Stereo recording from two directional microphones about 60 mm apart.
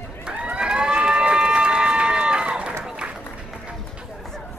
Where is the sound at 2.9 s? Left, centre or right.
Centre.